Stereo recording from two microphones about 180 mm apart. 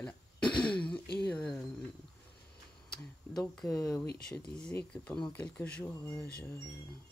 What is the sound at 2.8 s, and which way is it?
Speech, 5° left (ahead or behind).